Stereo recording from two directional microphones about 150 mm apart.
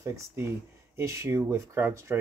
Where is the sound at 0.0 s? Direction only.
20° right (ahead or behind).